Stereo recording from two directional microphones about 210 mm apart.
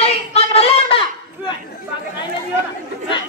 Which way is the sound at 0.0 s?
30° left (ahead or behind).